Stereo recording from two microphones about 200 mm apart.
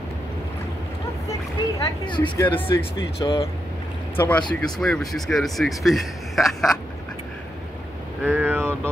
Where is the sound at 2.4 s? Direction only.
10° left (ahead or behind).